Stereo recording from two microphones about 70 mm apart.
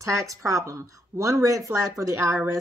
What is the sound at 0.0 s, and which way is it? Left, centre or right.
Speech, right.